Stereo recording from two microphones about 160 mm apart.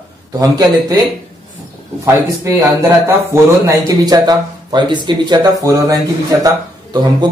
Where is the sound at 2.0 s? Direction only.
15° right (ahead or behind).